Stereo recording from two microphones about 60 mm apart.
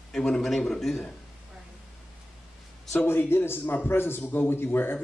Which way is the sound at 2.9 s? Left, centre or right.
Left.